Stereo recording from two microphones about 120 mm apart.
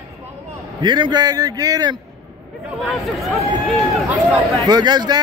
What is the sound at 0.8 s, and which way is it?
A man's voice, 40° right (ahead or behind).